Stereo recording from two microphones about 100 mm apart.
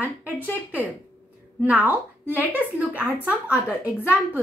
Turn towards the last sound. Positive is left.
turn(degrees=-15)  # may be behind; listen again after turning